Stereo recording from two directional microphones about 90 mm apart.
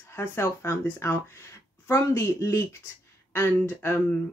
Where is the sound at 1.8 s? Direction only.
30° left (ahead or behind).